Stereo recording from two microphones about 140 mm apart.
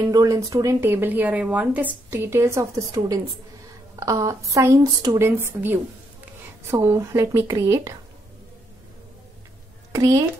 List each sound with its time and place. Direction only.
0.1 s a woman's voice: 25° right (ahead or behind)
9.9 s a woman's voice: 25° right (ahead or behind)